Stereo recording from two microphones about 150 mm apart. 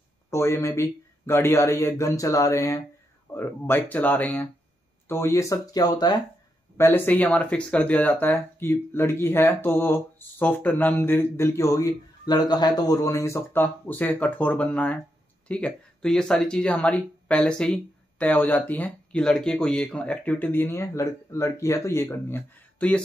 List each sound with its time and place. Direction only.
0.3 s speech: 20° left (ahead or behind)
6.8 s speech: 15° left (ahead or behind)